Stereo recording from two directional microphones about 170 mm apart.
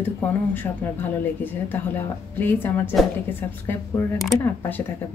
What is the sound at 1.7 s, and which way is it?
A woman's voice, 10° left (ahead or behind).